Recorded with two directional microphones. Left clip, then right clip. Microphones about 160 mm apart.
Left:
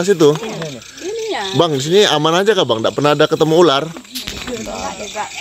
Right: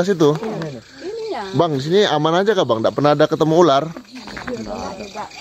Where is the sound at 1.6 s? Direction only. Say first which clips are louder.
Left 3 dB; 10° left (ahead or behind).